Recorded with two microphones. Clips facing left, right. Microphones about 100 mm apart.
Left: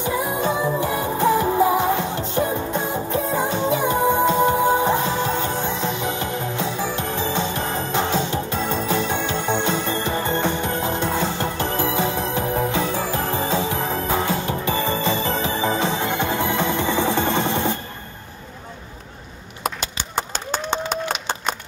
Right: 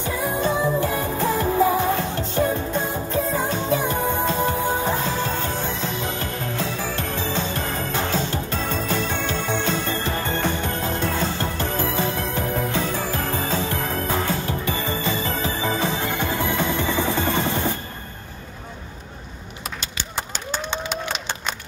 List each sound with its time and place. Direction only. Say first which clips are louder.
0.0 s music: left 1 dB; 15° left (ahead or behind)
20.6 s applause: left 5 dB; 40° left (ahead or behind)